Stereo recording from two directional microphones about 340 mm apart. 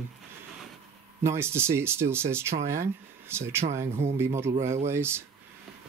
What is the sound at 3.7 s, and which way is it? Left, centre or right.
Speech, centre.